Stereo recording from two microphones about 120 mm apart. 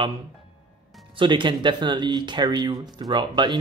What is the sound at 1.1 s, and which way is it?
Speech, 40° right (ahead or behind).